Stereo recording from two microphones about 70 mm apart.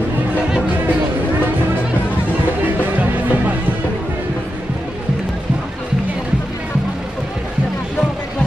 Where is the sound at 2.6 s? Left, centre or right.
Right.